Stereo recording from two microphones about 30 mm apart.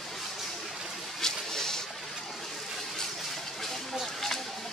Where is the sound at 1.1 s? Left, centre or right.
Centre.